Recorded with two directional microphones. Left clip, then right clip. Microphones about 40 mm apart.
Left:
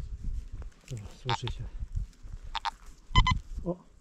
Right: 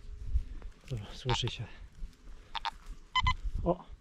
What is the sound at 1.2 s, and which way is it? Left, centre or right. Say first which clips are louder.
Speech: left 1 dB; left.